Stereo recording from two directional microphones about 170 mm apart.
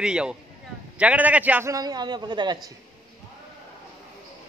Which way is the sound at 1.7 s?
25° right (ahead or behind).